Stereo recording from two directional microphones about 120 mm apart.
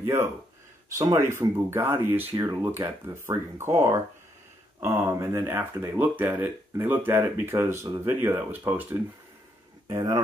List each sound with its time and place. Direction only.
0.0 s speech: 20° right (ahead or behind)
9.8 s speech: 30° right (ahead or behind)